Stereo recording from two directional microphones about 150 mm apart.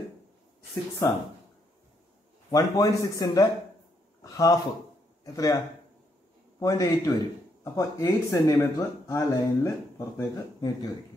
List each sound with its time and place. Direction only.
1.0 s speech: 20° left (ahead or behind)
2.5 s a man's voice: 20° left (ahead or behind)
6.6 s speech: 20° left (ahead or behind)